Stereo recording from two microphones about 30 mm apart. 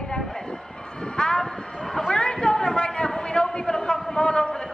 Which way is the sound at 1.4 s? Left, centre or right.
Centre.